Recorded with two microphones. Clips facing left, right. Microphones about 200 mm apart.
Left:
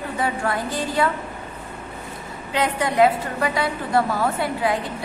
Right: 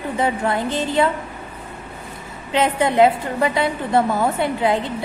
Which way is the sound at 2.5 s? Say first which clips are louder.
Right 4 dB; 25° right (ahead or behind).